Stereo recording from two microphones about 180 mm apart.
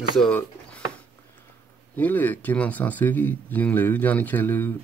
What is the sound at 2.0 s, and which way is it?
Speech, 10° left (ahead or behind).